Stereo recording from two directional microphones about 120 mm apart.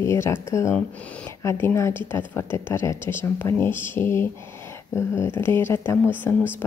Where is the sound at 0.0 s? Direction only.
20° left (ahead or behind).